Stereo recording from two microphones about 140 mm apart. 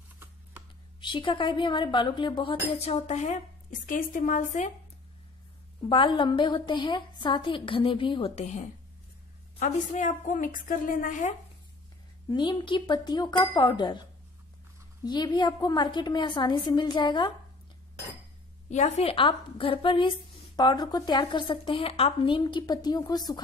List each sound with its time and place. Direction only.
1.0 s a woman's voice: 35° left (ahead or behind); by 3.3 s 55° left (ahead or behind)
3.8 s a woman's voice: 75° left (ahead or behind)
5.9 s a woman's voice: 35° left (ahead or behind)
9.6 s a woman's voice: 60° left (ahead or behind)
12.3 s a woman's voice: 35° left (ahead or behind)
15.0 s a woman's voice: 30° left (ahead or behind)
18.7 s a woman's voice: 50° left (ahead or behind); by 23.4 s 30° left (ahead or behind)